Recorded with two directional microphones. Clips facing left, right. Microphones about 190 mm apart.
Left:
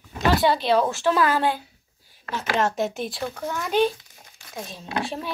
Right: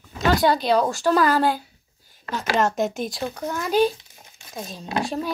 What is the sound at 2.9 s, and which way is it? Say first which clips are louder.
Speech: right 2 dB; 40° right (ahead or behind).